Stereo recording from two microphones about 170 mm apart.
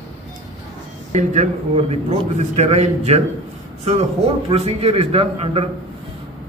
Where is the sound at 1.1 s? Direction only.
40° right (ahead or behind).